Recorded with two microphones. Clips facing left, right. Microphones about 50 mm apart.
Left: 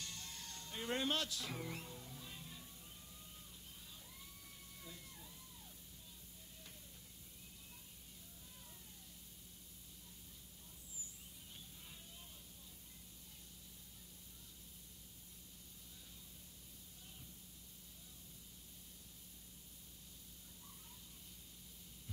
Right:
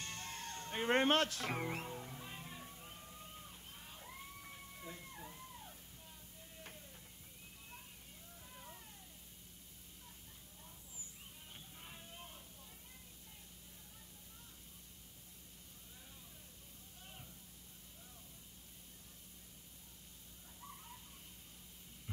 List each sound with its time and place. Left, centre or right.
0.0 s music: right
8.5 s a sound: right
11.5 s music: right